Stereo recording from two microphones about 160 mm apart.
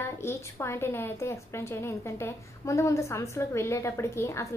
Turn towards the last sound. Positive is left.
turn(degrees=20)  # may be behind; listen again after turning